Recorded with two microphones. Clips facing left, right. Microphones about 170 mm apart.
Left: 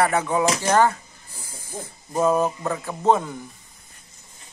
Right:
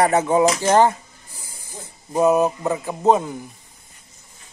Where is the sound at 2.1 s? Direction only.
15° right (ahead or behind).